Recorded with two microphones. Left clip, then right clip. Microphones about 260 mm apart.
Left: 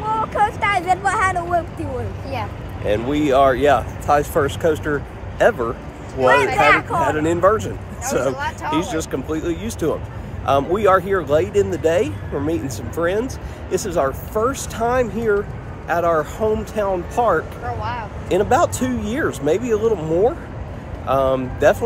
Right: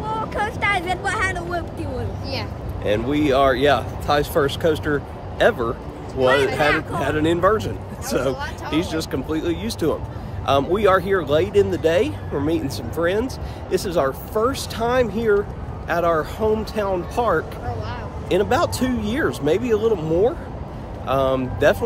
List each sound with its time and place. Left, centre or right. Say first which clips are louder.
0.5 s speech: left 3 dB; centre
3.1 s speech: left 3 dB; centre
6.1 s speech: left 3 dB; centre
7.1 s speech: even; centre